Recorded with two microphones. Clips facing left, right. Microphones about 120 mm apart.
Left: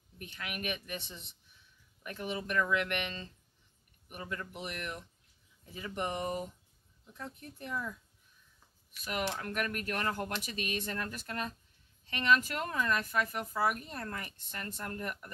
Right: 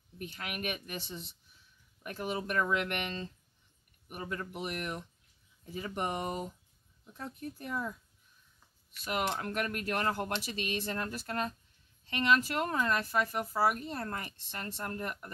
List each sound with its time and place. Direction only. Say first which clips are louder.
0.2 s speech: right 2 dB; 35° right (ahead or behind)
9.0 s speech: right 2 dB; 30° right (ahead or behind)